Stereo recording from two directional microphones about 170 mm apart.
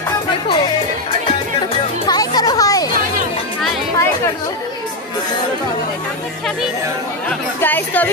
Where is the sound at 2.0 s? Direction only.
25° left (ahead or behind).